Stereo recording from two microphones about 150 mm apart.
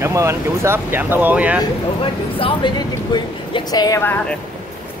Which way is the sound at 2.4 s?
30° left (ahead or behind).